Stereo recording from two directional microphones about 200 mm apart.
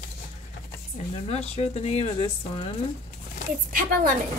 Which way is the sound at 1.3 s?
30° left (ahead or behind).